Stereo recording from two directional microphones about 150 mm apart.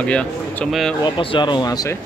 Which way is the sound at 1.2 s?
30° left (ahead or behind).